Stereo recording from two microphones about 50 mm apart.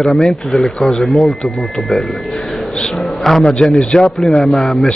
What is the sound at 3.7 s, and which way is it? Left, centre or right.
Speech, left.